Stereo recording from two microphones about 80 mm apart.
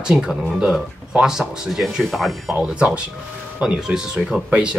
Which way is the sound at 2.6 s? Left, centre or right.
Centre.